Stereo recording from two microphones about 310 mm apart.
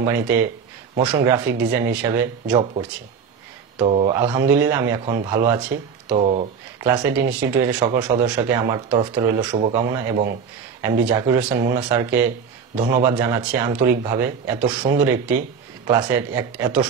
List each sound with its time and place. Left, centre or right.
0.0 s speech: centre
3.7 s speech: centre
6.1 s speech: right
6.8 s speech: centre
12.7 s speech: right
13.0 s speech: centre